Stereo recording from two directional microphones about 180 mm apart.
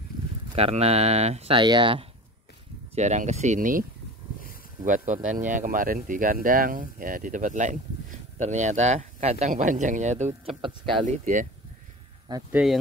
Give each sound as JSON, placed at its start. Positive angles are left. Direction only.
{"t": 0.6, "sound": "speech", "side_deg": -35}
{"t": 2.9, "sound": "speech", "side_deg": -40}
{"t": 4.8, "sound": "speech", "side_deg": -45}
{"t": 12.3, "sound": "speech", "side_deg": -25}